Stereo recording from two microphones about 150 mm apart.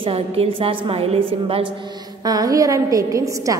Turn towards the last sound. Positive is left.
turn(degrees=-20)  # may be behind; listen again after turning